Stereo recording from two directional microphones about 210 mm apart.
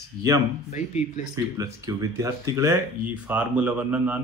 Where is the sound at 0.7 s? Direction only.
35° left (ahead or behind).